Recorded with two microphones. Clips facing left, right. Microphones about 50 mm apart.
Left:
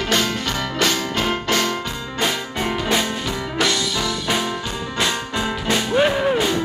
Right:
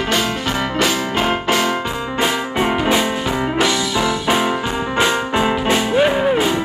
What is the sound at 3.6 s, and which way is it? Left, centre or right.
Music, centre.